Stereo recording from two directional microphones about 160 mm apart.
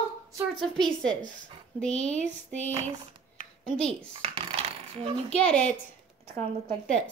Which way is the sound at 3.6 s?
5° left (ahead or behind).